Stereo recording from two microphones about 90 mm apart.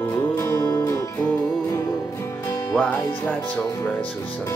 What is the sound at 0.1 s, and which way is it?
Music, 25° left (ahead or behind).